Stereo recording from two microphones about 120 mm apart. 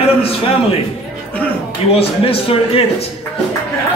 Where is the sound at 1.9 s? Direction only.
55° left (ahead or behind).